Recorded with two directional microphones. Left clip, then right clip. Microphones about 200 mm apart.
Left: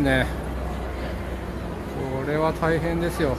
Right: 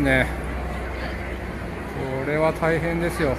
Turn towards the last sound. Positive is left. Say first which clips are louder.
# right 1 dB
turn(degrees=0)  # may be behind; listen again after turning